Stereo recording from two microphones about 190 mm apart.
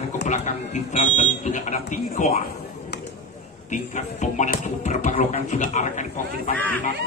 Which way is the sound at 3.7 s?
40° left (ahead or behind).